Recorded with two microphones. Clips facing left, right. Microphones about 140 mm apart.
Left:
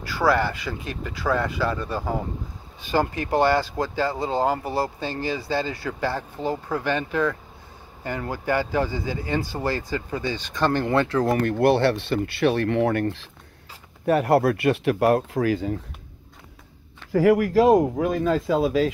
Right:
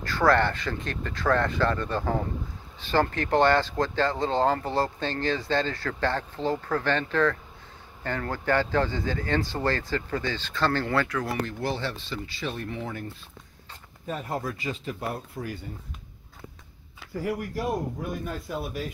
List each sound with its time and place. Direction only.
0.0 s speech: 10° left (ahead or behind)
11.2 s speech: 65° left (ahead or behind); by 15.8 s 90° left
17.1 s speech: 90° left